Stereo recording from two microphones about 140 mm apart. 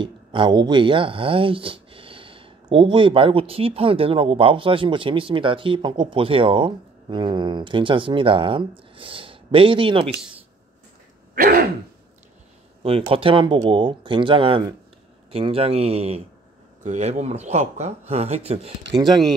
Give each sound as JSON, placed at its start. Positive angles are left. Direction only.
{"t": 0.0, "sound": "speech", "side_deg": -35}
{"t": 11.3, "sound": "throat clearing", "side_deg": -90}
{"t": 12.8, "sound": "speech", "side_deg": -45}
{"t": 19.0, "sound": "speech", "side_deg": 0}